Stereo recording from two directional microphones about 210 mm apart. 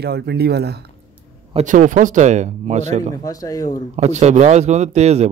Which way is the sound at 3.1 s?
15° left (ahead or behind).